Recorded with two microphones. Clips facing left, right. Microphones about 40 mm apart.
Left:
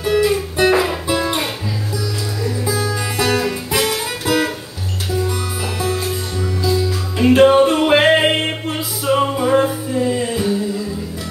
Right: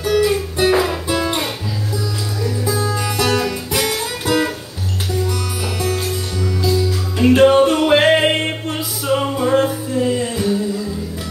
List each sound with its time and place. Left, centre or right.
0.0 s music: centre
2.7 s music: centre
3.8 s music: centre
5.8 s music: left
7.2 s music: centre